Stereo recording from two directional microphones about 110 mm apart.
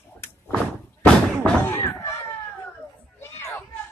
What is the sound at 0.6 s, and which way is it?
Slam, 10° left (ahead or behind).